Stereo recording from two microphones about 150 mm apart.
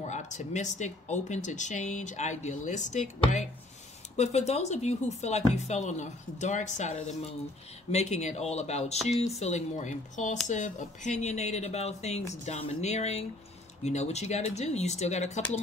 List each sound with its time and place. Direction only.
0.0 s speech: 50° left (ahead or behind)